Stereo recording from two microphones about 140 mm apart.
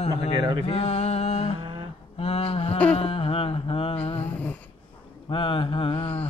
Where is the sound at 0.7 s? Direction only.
45° left (ahead or behind).